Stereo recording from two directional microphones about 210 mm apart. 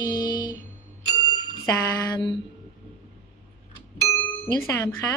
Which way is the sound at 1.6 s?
15° left (ahead or behind).